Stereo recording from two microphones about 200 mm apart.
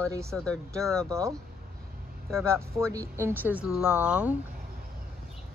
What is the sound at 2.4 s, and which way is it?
Speech, 15° right (ahead or behind).